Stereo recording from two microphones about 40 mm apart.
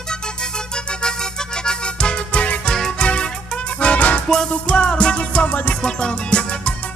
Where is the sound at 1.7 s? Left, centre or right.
Left.